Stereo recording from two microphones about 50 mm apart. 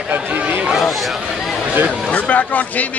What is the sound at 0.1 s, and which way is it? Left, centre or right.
Chatter, right.